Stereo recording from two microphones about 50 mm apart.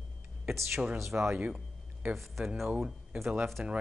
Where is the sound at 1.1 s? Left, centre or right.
Right.